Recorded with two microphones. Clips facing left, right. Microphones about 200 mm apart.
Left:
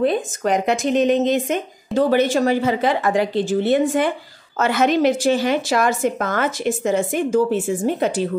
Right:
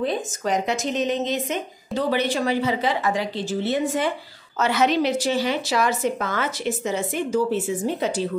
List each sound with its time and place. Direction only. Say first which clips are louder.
0.0 s speech: left 6 dB; 55° left (ahead or behind)